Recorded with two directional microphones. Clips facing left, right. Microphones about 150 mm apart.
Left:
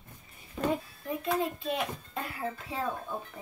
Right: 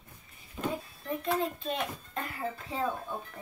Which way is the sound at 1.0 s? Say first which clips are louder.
Right 1 dB; 5° left (ahead or behind).